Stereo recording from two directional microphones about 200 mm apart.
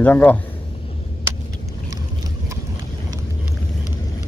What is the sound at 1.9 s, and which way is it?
Boat, 15° right (ahead or behind).